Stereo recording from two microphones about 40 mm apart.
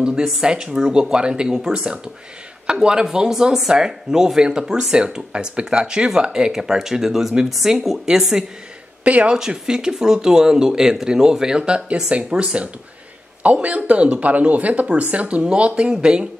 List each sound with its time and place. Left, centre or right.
0.0 s speech: centre
9.0 s speech: right
9.4 s speech: centre